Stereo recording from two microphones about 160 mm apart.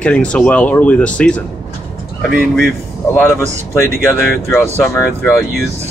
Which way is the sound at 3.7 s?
15° left (ahead or behind).